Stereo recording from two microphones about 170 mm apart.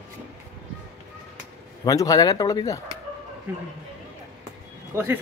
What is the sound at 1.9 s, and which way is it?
Speech, 20° left (ahead or behind).